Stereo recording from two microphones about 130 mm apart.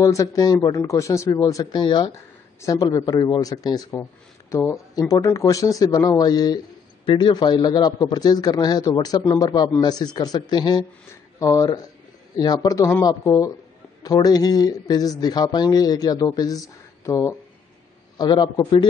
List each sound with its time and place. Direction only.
0.0 s a man's voice: 25° left (ahead or behind)
18.1 s a man's voice: 35° left (ahead or behind)